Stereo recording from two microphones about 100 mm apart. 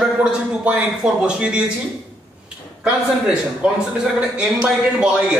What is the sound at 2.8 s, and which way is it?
A man's voice, 10° right (ahead or behind).